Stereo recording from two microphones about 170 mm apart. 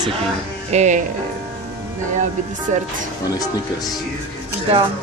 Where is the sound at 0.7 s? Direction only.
45° right (ahead or behind).